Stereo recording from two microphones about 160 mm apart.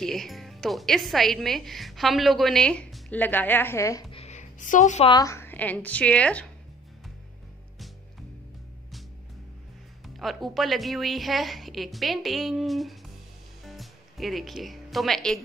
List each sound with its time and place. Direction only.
0.0 s speech: centre (ahead or behind); by 4.0 s 20° left (ahead or behind)
4.1 s a sound: 45° left (ahead or behind)
5.0 s a woman's voice: 25° left (ahead or behind); by 6.4 s 10° left (ahead or behind)
10.0 s speech: centre (ahead or behind)
13.7 s music: centre (ahead or behind)